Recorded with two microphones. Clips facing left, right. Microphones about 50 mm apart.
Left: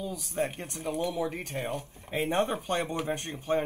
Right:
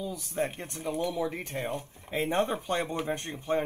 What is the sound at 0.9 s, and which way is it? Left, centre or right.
Speech, left.